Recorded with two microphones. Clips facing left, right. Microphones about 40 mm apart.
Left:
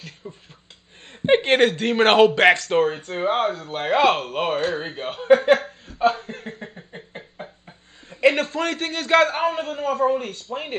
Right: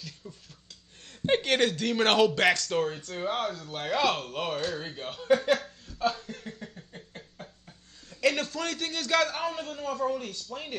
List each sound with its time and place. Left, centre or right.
0.2 s speech: left
1.2 s chuckle: left
1.9 s speech: centre
5.9 s a sound: left
8.4 s speech: left